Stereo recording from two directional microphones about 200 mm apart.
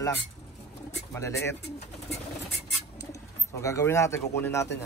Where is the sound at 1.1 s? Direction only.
15° left (ahead or behind).